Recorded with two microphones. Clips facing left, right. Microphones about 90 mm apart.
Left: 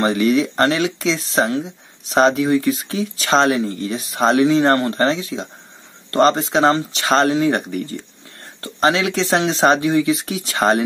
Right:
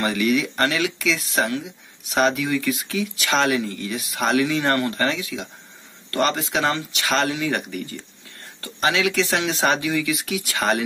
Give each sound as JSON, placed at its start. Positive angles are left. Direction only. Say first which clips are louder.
{"t": 0.0, "sound": "speech", "louder": "left 5 dB", "side_deg": 30}